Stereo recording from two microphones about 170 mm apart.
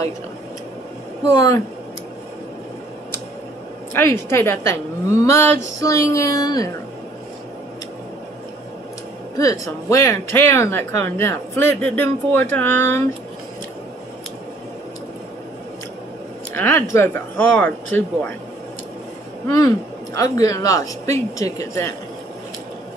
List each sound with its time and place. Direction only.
1.3 s speech: 20° left (ahead or behind)
3.9 s speech: 15° left (ahead or behind)
9.4 s speech: 20° left (ahead or behind)
16.5 s speech: 10° left (ahead or behind)
20.2 s speech: 20° left (ahead or behind)